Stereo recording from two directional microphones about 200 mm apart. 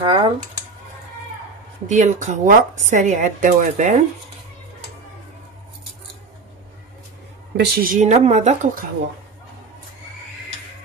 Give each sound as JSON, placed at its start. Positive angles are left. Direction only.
{"t": 0.0, "sound": "speech", "side_deg": -25}
{"t": 1.9, "sound": "a woman's voice", "side_deg": -35}
{"t": 7.5, "sound": "a woman's voice", "side_deg": -50}